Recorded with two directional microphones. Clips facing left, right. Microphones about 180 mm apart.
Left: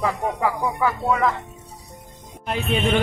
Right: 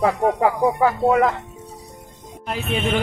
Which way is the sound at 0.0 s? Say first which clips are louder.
Right 5 dB; 50° right (ahead or behind).